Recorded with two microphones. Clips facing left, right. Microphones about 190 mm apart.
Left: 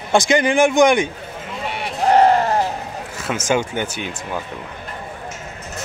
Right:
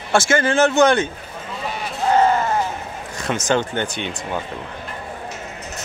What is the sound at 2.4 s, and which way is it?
Sheep, 35° left (ahead or behind).